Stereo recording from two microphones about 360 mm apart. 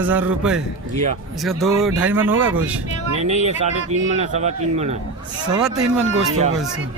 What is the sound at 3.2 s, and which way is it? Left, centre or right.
A man's voice, centre.